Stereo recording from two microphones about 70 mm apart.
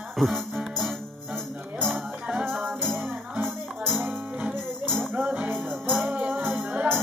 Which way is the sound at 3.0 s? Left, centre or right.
Right.